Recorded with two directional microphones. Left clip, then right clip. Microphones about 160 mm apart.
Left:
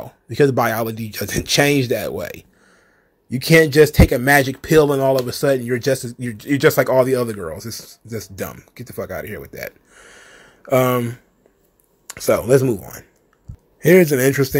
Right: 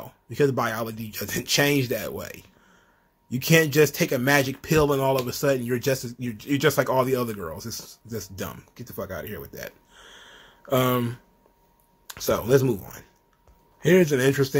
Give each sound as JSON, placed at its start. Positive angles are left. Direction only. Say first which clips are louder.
{"t": 0.0, "sound": "speech", "louder": "left 7 dB", "side_deg": 35}
{"t": 12.1, "sound": "speech", "louder": "left 6 dB", "side_deg": 20}